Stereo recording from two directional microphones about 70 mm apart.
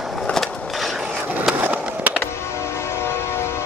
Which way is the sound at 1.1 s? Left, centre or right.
Right.